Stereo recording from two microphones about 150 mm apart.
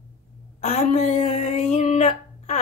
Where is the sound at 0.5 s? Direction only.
50° left (ahead or behind).